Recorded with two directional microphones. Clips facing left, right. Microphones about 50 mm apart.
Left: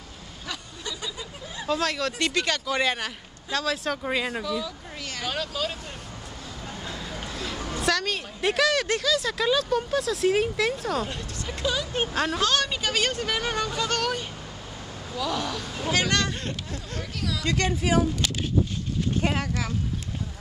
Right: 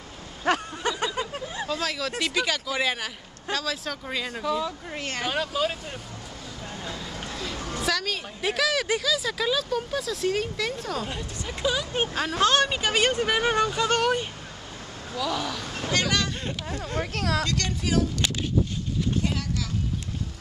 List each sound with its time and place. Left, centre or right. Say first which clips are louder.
0.5 s a sound: right 11 dB; right
1.7 s a woman's voice: left 5 dB; centre
4.0 s a woman's voice: left 4 dB; centre
4.5 s speech: right 3 dB; right
5.2 s speech: right 3 dB; centre
7.6 s a woman's voice: left 2 dB; centre
11.1 s speech: even; centre
12.4 s speech: right 3 dB; right
15.1 s a woman's voice: even; centre
17.1 s speech: right 4 dB; right
17.5 s a woman's voice: left 3 dB; centre
19.2 s speech: left 3 dB; left